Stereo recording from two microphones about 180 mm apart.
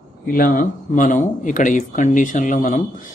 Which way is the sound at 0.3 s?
50° left (ahead or behind).